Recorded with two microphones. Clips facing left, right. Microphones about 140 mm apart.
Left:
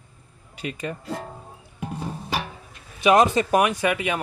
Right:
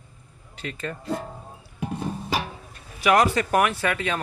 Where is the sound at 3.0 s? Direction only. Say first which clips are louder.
Left 2 dB; 20° left (ahead or behind).